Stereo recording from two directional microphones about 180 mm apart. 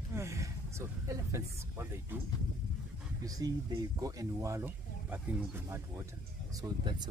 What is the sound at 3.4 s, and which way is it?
Speech, 20° right (ahead or behind).